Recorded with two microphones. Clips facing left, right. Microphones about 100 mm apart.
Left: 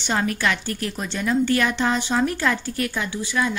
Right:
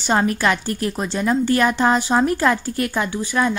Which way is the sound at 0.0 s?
35° right (ahead or behind).